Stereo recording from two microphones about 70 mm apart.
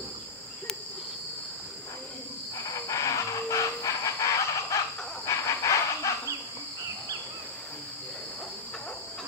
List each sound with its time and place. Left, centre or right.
2.7 s chicken: left